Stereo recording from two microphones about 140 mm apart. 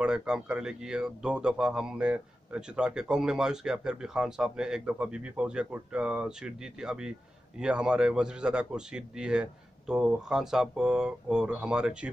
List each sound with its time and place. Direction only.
0.0 s speech: 5° right (ahead or behind)